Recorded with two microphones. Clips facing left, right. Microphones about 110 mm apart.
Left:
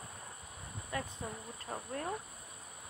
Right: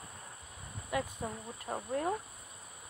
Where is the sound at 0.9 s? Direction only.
15° right (ahead or behind).